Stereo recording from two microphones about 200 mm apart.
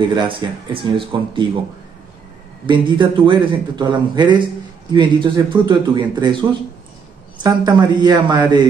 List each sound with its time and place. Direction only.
0.0 s a man's voice: 25° right (ahead or behind)
2.6 s a man's voice: 25° right (ahead or behind)
7.4 s a man's voice: 20° right (ahead or behind)